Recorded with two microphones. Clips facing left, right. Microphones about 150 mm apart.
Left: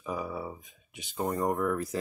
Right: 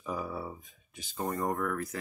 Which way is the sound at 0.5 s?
15° left (ahead or behind).